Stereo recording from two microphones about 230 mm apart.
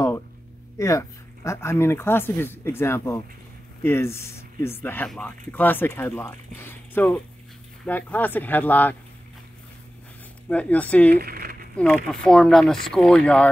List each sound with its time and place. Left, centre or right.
0.7 s speech: centre
10.5 s speech: centre
11.1 s speech: right
11.7 s speech: centre